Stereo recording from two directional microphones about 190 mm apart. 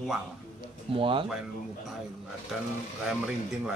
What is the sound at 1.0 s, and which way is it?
Speech, 25° right (ahead or behind).